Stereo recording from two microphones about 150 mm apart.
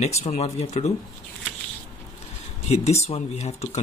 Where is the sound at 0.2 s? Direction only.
45° left (ahead or behind).